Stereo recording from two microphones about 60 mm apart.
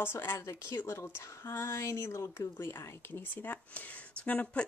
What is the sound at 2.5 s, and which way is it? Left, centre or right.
Speech, left.